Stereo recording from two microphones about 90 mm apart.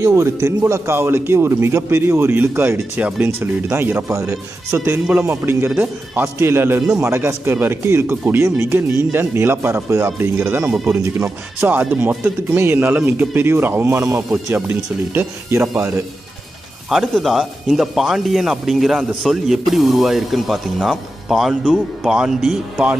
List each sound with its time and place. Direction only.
0.0 s speech: 30° right (ahead or behind)
16.9 s a man's voice: centre (ahead or behind)